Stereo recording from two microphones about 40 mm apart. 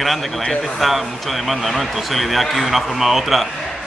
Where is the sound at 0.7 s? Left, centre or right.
Centre.